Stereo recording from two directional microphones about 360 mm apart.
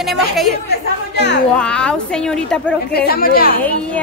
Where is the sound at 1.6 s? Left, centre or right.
Centre.